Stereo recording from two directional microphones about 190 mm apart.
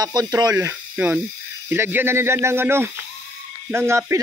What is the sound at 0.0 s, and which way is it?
Speech, 20° right (ahead or behind).